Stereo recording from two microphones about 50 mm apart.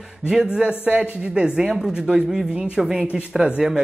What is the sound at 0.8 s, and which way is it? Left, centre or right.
A man's voice, right.